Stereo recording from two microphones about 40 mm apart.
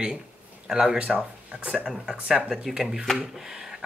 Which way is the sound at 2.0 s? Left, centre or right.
Right.